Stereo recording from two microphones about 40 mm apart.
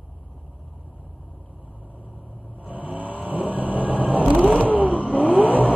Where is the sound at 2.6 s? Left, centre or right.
Right.